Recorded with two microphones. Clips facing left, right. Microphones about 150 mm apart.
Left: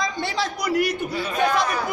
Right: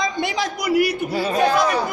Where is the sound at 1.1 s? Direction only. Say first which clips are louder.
Right 5 dB; 35° right (ahead or behind).